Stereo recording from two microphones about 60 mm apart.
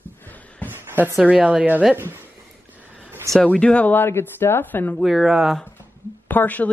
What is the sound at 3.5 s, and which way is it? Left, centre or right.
Speech, centre.